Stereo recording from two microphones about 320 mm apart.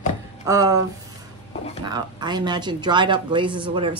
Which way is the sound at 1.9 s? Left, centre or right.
Centre.